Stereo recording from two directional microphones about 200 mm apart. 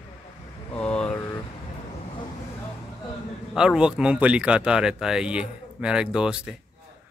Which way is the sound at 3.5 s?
5° right (ahead or behind).